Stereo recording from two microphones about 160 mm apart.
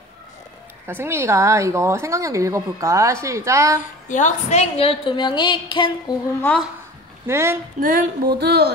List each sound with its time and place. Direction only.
0.8 s speech: 15° right (ahead or behind)
4.1 s a woman's voice: 50° left (ahead or behind); by 6.1 s 30° left (ahead or behind)
7.2 s speech: 15° right (ahead or behind)
7.8 s music: 60° right (ahead or behind)
8.4 s speech: 90° right